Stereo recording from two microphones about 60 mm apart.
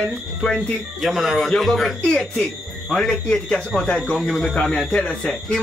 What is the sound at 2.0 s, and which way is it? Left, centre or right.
A man's voice, centre.